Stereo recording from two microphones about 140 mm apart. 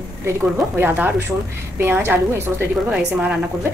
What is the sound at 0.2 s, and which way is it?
A woman's voice, 15° right (ahead or behind).